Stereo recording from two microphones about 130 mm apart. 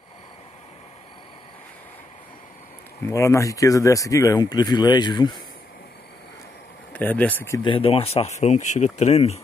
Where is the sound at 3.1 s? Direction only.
25° left (ahead or behind).